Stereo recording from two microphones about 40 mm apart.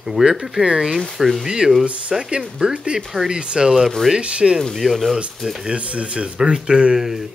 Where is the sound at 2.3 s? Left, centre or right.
Right.